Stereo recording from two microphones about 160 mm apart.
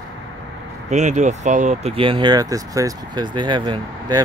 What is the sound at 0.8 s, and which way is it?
Speech, 45° right (ahead or behind).